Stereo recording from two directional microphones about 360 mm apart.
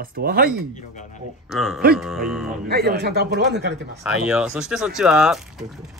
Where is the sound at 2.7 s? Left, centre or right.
Right.